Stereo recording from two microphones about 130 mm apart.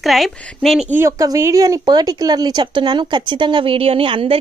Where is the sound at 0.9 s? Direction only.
20° right (ahead or behind); by 4.3 s 45° right (ahead or behind).